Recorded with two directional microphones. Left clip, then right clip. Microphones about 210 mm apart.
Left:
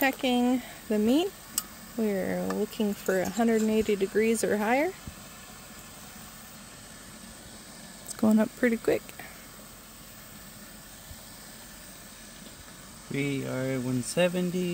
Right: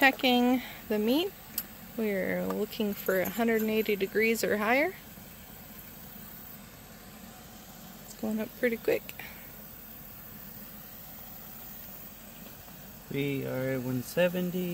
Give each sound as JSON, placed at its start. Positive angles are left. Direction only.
{"t": 0.0, "sound": "speech", "side_deg": 15}
{"t": 8.2, "sound": "speech", "side_deg": 45}
{"t": 13.1, "sound": "speech", "side_deg": 40}